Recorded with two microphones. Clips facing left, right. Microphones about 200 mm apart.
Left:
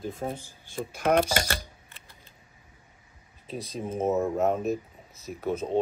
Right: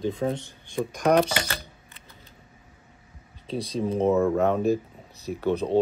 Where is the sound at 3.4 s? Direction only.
30° right (ahead or behind).